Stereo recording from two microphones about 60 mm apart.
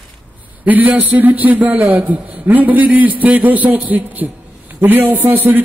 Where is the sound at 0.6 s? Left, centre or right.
Right.